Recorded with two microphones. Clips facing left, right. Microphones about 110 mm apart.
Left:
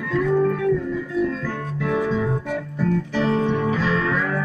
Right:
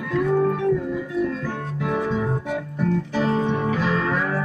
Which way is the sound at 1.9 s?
15° right (ahead or behind).